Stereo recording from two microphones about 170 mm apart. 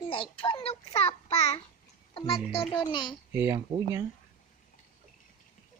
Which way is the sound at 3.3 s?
15° right (ahead or behind).